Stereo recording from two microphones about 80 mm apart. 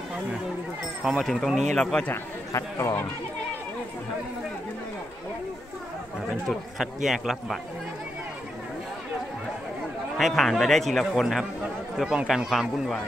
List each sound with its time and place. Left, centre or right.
1.1 s speech: centre
2.5 s speech: left
6.8 s speech: centre
10.1 s speech: centre